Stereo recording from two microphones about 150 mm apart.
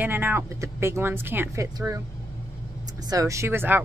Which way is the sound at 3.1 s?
20° right (ahead or behind).